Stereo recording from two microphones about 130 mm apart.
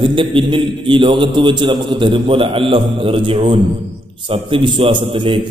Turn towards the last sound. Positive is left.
turn(degrees=-40)  # may be behind; listen again after turning